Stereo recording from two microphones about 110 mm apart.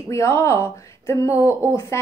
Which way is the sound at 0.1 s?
25° left (ahead or behind).